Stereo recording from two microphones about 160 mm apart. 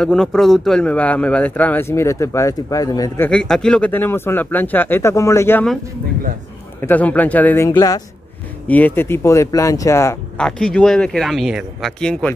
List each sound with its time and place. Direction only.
0.0 s a man's voice: 5° left (ahead or behind); by 3.3 s 20° left (ahead or behind)
3.3 s a man's voice: 5° left (ahead or behind)
6.8 s a man's voice: 10° left (ahead or behind)
10.3 s speech: 5° left (ahead or behind)